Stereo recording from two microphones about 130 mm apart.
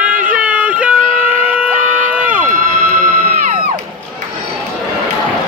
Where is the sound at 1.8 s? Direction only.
90° right.